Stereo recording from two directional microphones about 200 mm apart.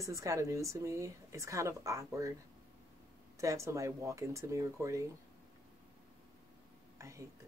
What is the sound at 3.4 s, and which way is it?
Speech, 15° right (ahead or behind).